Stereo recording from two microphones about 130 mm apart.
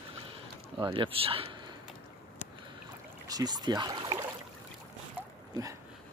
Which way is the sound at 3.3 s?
30° right (ahead or behind).